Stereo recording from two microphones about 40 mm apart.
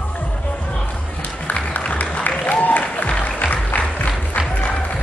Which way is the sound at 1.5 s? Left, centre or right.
Left.